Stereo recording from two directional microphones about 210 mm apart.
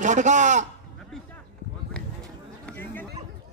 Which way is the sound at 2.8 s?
10° left (ahead or behind).